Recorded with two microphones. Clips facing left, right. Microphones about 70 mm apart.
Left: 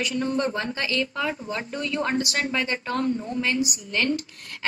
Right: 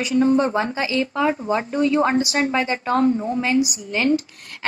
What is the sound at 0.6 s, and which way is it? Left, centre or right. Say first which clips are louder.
Speech: right 5 dB; centre.